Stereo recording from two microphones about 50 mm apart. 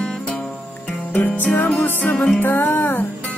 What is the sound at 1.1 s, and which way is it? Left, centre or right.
Music, left.